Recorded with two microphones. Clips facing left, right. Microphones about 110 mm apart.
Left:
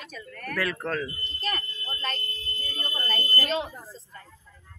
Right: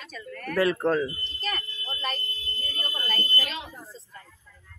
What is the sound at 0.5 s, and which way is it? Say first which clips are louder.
Speech: right 6 dB; 25° right (ahead or behind).